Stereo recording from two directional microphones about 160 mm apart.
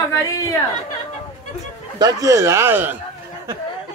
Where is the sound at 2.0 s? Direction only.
20° right (ahead or behind).